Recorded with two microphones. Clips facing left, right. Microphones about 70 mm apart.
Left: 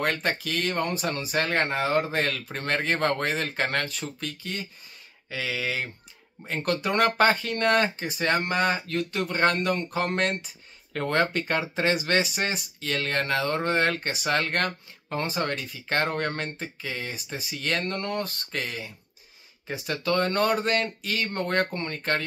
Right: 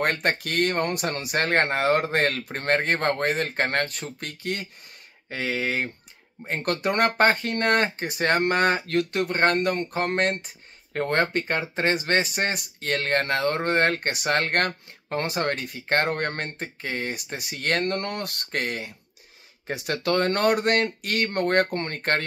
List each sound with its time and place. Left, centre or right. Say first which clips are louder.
0.0 s speech: right 2 dB; right
5.3 s speech: right 3 dB; right
19.7 s speech: right 2 dB; right